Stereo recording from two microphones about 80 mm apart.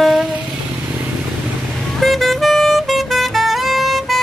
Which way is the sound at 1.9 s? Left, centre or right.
Centre.